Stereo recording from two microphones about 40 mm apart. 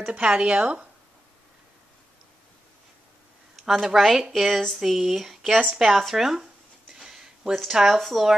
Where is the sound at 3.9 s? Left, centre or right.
Centre.